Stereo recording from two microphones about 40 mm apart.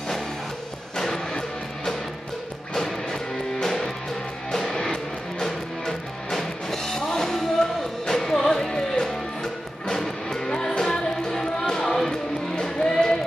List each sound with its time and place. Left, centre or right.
0.9 s music: centre
2.7 s music: centre
10.5 s music: centre